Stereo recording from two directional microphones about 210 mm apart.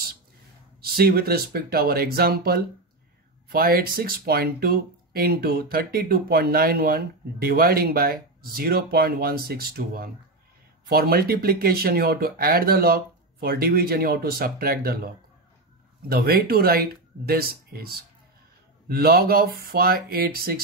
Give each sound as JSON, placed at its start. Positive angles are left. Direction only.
{"t": 0.7, "sound": "speech", "side_deg": -45}
{"t": 16.1, "sound": "speech", "side_deg": -45}